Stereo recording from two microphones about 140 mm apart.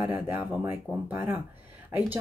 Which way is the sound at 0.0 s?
15° right (ahead or behind).